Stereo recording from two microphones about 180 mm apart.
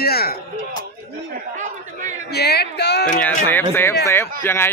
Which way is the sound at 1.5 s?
40° right (ahead or behind).